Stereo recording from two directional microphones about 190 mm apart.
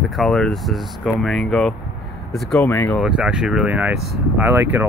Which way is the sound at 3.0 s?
5° right (ahead or behind).